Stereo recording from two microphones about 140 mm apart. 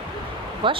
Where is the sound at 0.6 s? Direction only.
35° right (ahead or behind).